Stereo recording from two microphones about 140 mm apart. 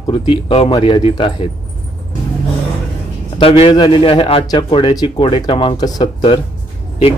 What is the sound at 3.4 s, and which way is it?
Speech, 40° left (ahead or behind).